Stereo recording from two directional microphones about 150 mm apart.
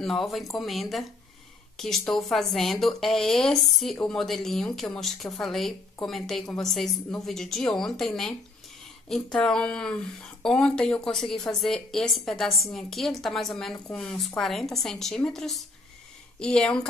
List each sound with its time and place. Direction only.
0.0 s speech: centre (ahead or behind)